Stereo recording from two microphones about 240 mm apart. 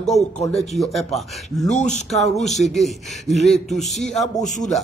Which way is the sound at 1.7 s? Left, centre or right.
Left.